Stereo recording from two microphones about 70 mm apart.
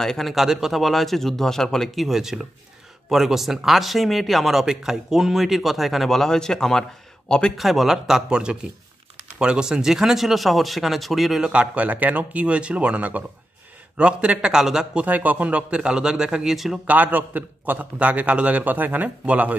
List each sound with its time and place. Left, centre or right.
0.0 s speech: centre
7.5 s speech: centre
11.4 s a man's voice: centre
15.0 s a man's voice: right; by 16.8 s centre
16.8 s a man's voice: right